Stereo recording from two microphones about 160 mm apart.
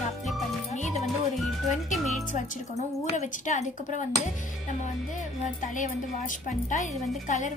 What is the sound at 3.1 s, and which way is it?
Speech, 45° left (ahead or behind).